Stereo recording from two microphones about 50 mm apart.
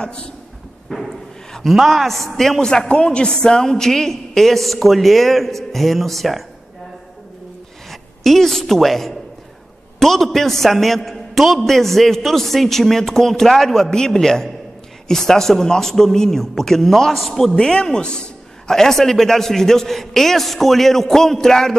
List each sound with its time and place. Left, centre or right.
0.0 s speech: centre
0.8 s a sound: centre
1.7 s a man's voice: centre
7.9 s a woman's voice: centre